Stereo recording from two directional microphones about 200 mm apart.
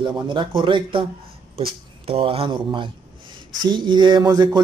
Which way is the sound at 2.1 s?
30° right (ahead or behind).